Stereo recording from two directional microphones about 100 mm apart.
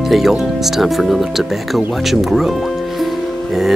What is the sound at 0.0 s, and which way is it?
Speech, centre (ahead or behind).